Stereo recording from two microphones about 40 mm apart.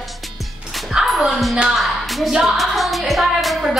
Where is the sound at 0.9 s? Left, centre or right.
Centre.